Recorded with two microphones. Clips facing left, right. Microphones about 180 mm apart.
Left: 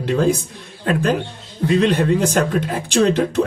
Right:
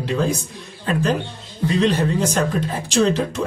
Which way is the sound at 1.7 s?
60° left (ahead or behind).